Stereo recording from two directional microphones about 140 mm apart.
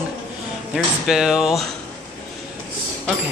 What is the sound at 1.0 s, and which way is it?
Speech, 5° right (ahead or behind).